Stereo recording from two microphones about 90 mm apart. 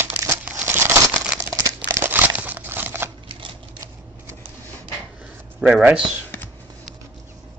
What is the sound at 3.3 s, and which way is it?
Typewriter, 70° right (ahead or behind).